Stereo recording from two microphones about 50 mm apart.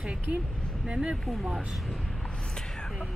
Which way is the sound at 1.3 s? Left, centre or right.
Centre.